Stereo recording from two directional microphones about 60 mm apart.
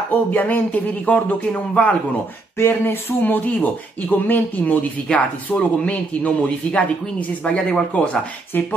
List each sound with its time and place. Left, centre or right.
0.1 s speech: left
2.5 s speech: left; by 8.2 s centre
8.5 s speech: left